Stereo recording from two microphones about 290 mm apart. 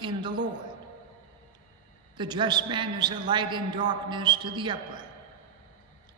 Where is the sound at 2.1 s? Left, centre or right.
Centre.